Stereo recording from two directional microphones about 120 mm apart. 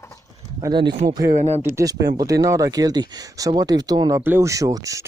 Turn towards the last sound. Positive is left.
turn(degrees=-25)  # may be behind; listen again after turning